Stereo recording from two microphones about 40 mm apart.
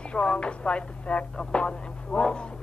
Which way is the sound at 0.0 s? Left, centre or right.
Left.